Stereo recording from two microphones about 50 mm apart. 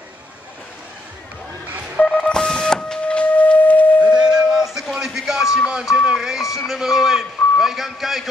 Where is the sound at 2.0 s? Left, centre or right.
Centre.